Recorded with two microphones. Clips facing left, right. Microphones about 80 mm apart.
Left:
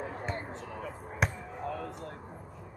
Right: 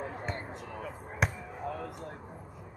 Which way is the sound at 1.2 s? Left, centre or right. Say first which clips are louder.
Even; centre.